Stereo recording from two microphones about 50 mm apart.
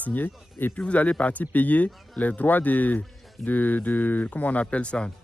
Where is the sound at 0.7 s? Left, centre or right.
Left.